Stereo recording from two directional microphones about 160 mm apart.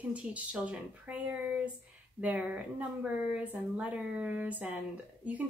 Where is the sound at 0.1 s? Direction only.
10° right (ahead or behind).